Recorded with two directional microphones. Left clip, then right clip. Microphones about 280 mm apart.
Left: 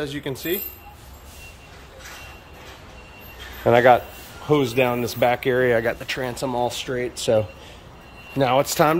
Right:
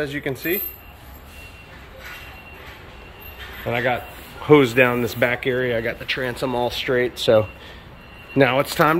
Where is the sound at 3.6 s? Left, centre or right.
Centre.